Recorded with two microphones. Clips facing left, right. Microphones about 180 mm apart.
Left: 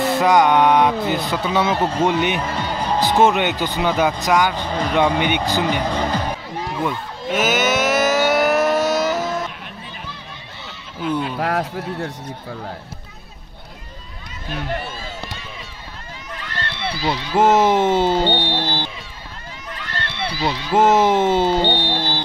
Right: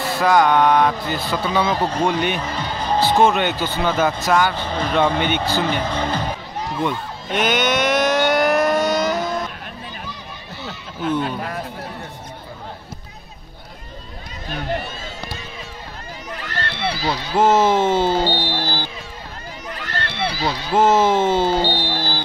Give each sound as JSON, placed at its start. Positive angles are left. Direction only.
{"t": 0.0, "sound": "speech", "side_deg": 20}
{"t": 1.5, "sound": "speech", "side_deg": 5}
{"t": 2.0, "sound": "speech", "side_deg": 20}
{"t": 5.9, "sound": "speech", "side_deg": 40}
{"t": 6.8, "sound": "a sound", "side_deg": 5}
{"t": 11.3, "sound": "speech", "side_deg": 65}
{"t": 16.3, "sound": "run", "side_deg": -50}
{"t": 17.0, "sound": "speech", "side_deg": 20}
{"t": 19.8, "sound": "run", "side_deg": -50}
{"t": 20.7, "sound": "speech", "side_deg": 20}